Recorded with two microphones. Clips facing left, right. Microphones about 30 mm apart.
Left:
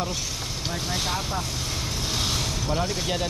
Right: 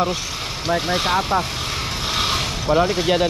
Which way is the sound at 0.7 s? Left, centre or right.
Right.